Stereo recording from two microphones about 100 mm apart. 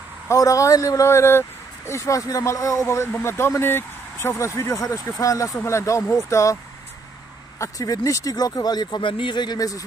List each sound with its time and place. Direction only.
0.3 s speech: 35° left (ahead or behind)